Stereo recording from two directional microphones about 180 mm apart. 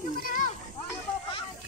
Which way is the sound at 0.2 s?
50° left (ahead or behind).